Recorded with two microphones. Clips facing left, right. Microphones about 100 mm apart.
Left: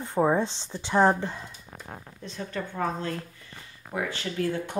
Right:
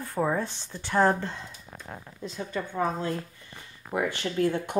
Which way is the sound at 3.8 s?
20° right (ahead or behind).